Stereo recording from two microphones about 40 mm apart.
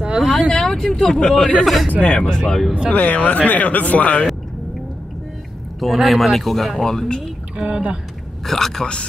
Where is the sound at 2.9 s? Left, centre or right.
Left.